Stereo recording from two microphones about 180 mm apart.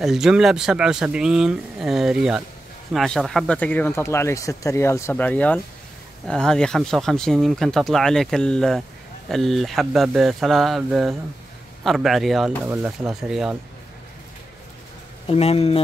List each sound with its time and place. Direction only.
0.0 s speech: centre (ahead or behind)
12.6 s speech: 10° right (ahead or behind)
13.1 s speech: centre (ahead or behind)
15.2 s speech: 35° left (ahead or behind)